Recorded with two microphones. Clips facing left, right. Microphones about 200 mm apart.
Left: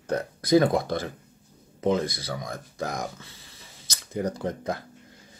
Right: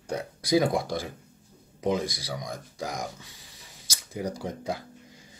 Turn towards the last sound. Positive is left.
turn(degrees=-10)  # may be behind; listen again after turning